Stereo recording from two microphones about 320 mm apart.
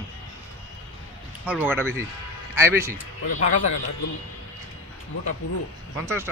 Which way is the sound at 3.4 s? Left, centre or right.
Left.